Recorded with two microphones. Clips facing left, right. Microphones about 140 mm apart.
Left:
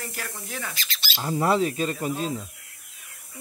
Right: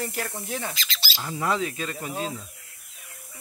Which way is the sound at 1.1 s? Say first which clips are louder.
Left 5 dB; 35° left (ahead or behind).